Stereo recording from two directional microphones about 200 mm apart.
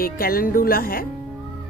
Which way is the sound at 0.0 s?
45° left (ahead or behind).